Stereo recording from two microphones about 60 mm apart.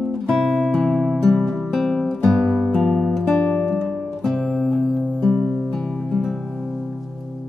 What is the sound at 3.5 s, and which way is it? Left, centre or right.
Music, centre.